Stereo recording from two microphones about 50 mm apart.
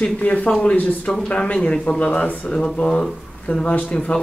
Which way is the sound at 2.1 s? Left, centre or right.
Left.